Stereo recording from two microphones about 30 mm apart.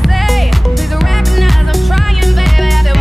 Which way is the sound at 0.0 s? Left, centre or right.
Centre.